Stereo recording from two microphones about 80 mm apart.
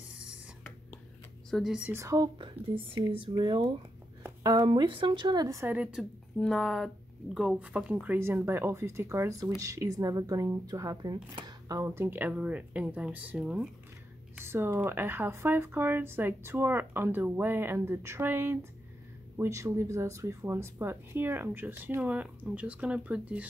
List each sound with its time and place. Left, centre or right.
1.5 s speech: centre
2.0 s speech: right
2.9 s speech: right
4.4 s speech: right
4.6 s speech: right
5.7 s speech: centre
6.4 s speech: centre
7.3 s speech: centre
8.2 s speech: right
11.9 s speech: right
14.3 s typing: right
14.9 s speech: right